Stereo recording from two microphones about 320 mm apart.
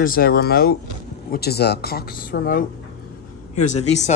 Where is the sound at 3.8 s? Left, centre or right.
Left.